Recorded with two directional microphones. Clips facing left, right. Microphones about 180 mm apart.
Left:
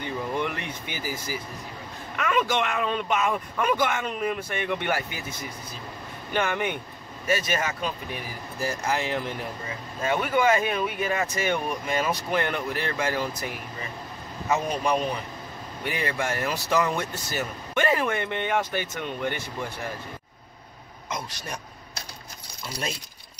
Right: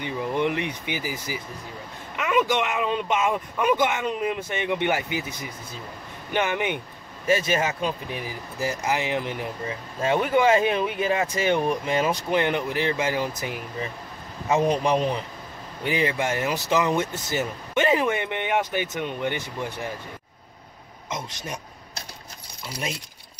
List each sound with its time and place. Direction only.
0.0 s speech: 20° right (ahead or behind)
6.3 s speech: 15° right (ahead or behind)
14.5 s speech: 25° right (ahead or behind)
21.1 s a man's voice: 20° right (ahead or behind)